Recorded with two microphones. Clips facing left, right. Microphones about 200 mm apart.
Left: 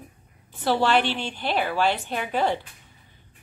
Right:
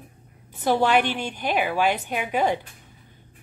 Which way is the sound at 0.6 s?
15° right (ahead or behind).